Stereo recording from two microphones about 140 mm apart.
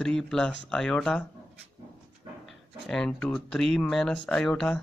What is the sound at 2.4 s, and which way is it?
Speech, 5° left (ahead or behind).